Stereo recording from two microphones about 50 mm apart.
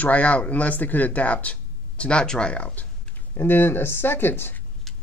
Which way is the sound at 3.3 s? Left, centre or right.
Left.